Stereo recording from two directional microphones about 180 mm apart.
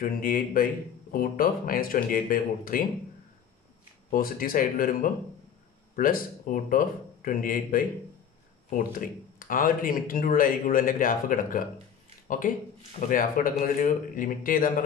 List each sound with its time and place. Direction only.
0.0 s speech: 50° left (ahead or behind)
4.1 s speech: 50° left (ahead or behind)